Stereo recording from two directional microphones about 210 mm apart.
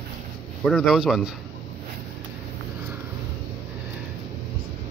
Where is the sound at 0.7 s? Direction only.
Centre (ahead or behind).